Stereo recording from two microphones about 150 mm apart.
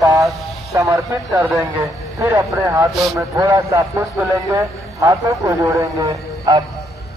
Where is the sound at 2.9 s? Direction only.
Centre (ahead or behind).